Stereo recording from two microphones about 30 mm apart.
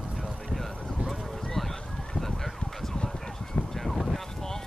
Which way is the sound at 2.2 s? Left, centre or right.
Centre.